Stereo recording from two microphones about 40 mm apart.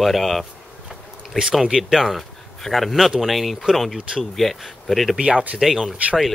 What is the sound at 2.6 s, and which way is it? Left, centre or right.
Speech, centre.